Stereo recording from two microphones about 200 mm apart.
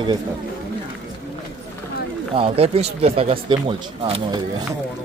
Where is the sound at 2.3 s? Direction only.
30° right (ahead or behind).